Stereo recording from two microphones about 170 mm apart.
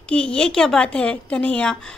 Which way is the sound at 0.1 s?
5° left (ahead or behind).